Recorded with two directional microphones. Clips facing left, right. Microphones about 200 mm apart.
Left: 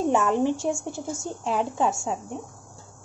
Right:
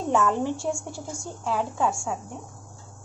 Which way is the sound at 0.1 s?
15° left (ahead or behind).